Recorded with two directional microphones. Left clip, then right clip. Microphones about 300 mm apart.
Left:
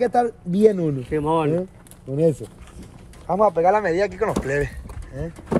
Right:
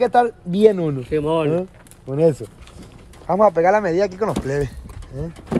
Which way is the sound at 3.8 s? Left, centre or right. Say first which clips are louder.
Right 2 dB; right.